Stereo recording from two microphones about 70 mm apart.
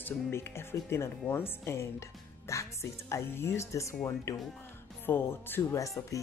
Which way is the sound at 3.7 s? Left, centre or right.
Left.